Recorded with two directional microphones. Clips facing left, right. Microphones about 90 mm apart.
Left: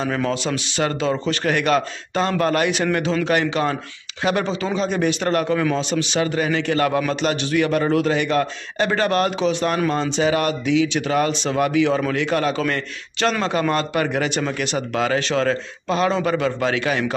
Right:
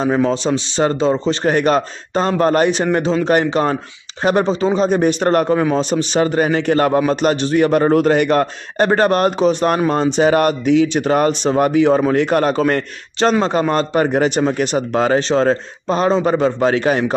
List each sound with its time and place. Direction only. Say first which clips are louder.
0.0 s a man's voice: right 6 dB; 25° right (ahead or behind)